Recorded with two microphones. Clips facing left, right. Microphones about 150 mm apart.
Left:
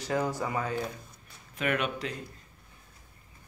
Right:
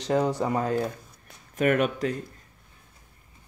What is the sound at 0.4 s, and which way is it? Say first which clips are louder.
Speech: right 6 dB; 40° right (ahead or behind).